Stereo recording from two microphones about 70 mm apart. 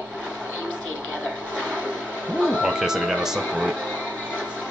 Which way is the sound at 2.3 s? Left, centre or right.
Centre.